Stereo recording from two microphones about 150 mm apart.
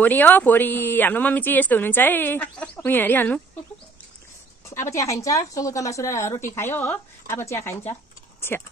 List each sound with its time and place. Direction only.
0.0 s speech: 10° left (ahead or behind)
4.6 s a woman's voice: 20° left (ahead or behind)